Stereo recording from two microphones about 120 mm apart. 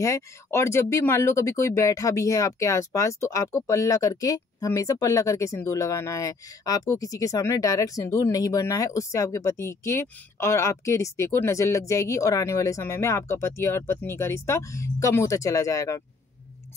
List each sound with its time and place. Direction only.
0.0 s speech: 25° left (ahead or behind)